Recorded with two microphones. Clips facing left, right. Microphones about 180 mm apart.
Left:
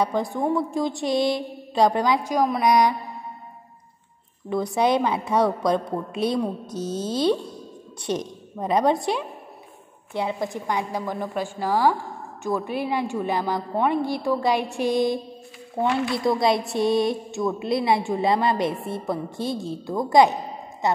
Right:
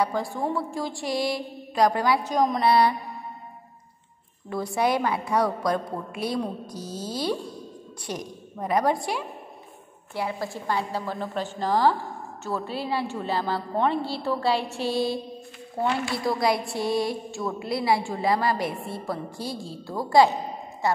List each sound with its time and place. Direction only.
0.0 s speech: 20° left (ahead or behind)
4.5 s a woman's voice: 20° left (ahead or behind)